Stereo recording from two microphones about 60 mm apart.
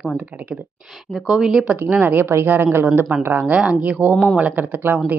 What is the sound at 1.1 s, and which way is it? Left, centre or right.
Speech, centre.